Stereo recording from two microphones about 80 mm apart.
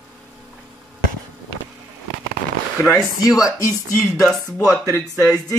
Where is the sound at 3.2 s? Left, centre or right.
Left.